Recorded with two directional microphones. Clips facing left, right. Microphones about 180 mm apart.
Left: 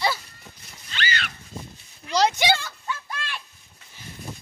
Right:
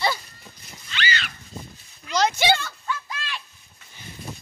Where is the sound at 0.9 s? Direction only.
50° left (ahead or behind).